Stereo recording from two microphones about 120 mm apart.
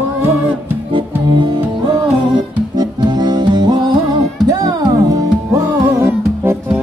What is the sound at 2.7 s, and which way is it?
Music, 35° right (ahead or behind).